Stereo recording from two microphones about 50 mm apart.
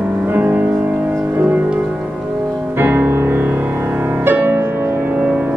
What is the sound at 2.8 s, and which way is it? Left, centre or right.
Music, right.